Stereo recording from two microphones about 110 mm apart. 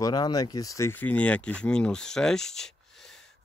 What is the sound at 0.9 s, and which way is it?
Speech, 15° left (ahead or behind).